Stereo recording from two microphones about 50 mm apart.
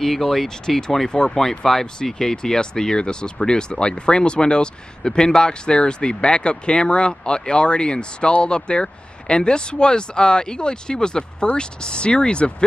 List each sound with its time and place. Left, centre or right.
0.0 s speech: centre